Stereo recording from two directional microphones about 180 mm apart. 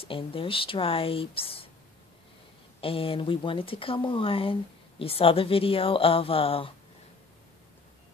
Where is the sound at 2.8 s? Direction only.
30° left (ahead or behind).